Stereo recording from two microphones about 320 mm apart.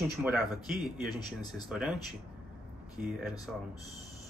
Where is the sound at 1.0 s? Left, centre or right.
Centre.